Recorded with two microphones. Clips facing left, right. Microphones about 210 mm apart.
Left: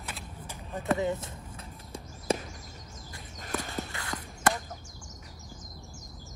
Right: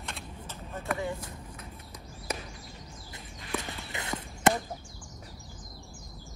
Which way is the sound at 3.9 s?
20° right (ahead or behind).